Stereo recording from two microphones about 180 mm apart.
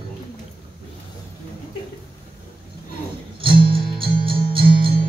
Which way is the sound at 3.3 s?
30° right (ahead or behind).